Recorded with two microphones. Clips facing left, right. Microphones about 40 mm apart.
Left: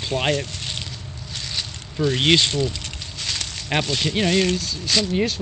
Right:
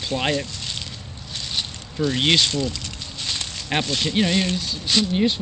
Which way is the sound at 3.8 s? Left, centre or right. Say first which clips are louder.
Left 1 dB; left.